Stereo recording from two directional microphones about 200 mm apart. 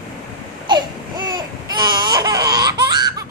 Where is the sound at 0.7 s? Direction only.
20° right (ahead or behind).